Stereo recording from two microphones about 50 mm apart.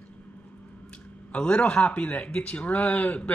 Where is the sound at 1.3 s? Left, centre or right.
Left.